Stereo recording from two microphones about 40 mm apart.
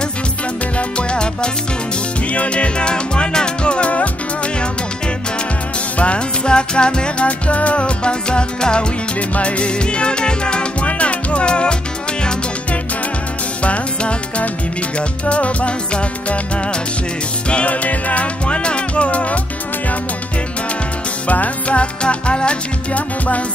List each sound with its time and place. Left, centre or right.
0.7 s music: left
5.9 s music: left
13.6 s music: left
17.5 s music: left
21.3 s music: left
22.9 s music: left